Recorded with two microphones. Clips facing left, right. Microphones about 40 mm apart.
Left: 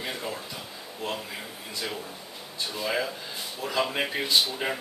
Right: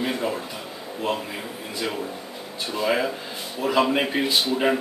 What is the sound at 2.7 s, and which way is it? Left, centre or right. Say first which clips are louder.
A man's voice: right 7 dB; right.